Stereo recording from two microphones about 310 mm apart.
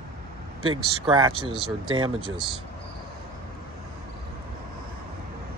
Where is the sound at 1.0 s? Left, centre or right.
Centre.